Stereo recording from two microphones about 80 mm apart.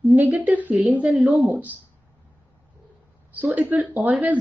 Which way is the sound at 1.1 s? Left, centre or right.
Centre.